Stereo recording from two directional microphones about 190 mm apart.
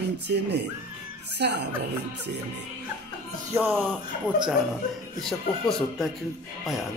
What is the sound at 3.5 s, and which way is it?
Speech, 10° right (ahead or behind).